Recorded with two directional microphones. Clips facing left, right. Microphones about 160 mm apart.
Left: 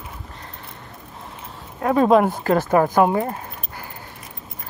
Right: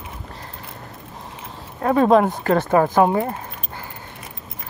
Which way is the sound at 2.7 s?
20° right (ahead or behind).